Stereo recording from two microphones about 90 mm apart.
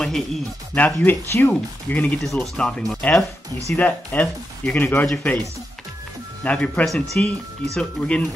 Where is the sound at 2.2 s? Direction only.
5° left (ahead or behind).